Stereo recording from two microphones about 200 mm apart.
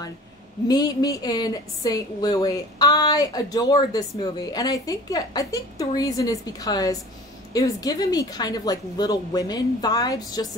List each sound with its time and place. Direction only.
0.7 s a woman's voice: 20° left (ahead or behind)